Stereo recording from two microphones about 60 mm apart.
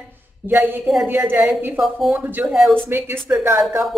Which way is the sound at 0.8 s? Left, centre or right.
Centre.